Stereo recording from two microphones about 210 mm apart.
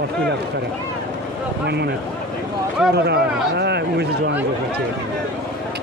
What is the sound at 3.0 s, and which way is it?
Speech, 50° right (ahead or behind).